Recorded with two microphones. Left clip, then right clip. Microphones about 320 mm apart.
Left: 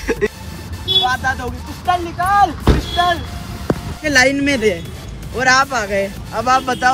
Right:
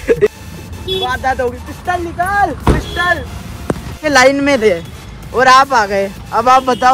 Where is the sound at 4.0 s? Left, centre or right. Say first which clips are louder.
Right 4 dB; right.